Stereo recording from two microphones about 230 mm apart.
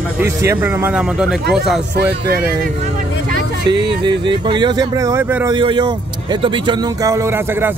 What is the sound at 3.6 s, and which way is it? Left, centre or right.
Speech, right.